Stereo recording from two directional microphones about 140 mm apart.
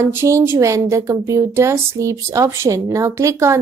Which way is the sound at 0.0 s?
15° right (ahead or behind).